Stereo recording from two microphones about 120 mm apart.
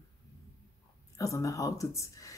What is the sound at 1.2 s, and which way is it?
Speech, 25° left (ahead or behind).